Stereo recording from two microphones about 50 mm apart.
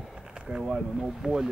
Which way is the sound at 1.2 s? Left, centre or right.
Centre.